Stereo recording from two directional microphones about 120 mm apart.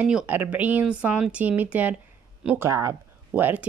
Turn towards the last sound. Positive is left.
turn(degrees=-15)  # may be behind; listen again after turning